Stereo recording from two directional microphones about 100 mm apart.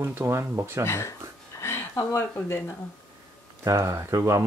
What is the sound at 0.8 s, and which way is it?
Speech, 25° left (ahead or behind).